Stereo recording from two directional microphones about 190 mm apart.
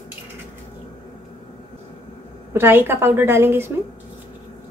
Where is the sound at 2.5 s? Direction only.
10° right (ahead or behind).